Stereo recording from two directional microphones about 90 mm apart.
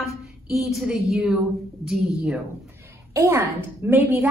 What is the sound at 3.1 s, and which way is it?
Speech, 35° right (ahead or behind).